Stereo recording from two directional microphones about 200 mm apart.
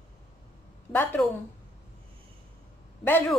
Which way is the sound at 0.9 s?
10° left (ahead or behind).